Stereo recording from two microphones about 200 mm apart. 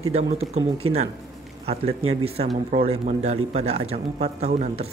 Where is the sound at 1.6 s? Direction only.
30° right (ahead or behind).